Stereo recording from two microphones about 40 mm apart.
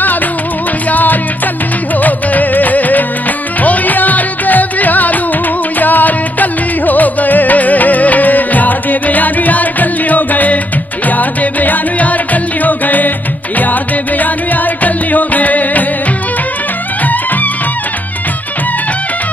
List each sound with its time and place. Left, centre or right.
0.8 s music: left
17.0 s music: left